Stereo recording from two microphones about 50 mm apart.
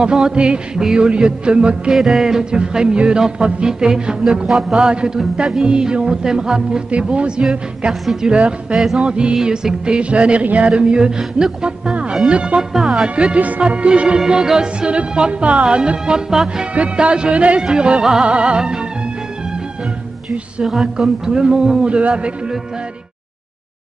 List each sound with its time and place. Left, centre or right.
0.0 s music: centre
1.9 s music: centre; by 7.4 s right
8.0 s speech: centre
8.3 s music: right
12.7 s speech: centre
13.0 s music: right
16.7 s music: right
20.6 s music: centre